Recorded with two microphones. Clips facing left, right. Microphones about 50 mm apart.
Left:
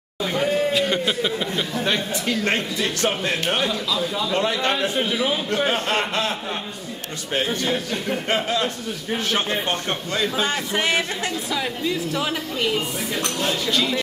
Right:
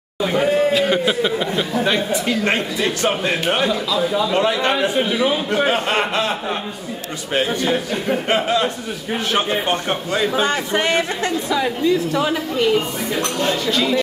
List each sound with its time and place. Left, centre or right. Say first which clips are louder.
0.2 s a man's voice: right 5 dB; centre
3.4 s a man's voice: right 5 dB; centre
5.0 s speech: right 4 dB; centre
5.6 s a man's voice: right 4 dB; centre
7.4 s a man's voice: right 4 dB; centre
8.3 s a man's voice: right 4 dB; right
12.3 s speech: right 6 dB; centre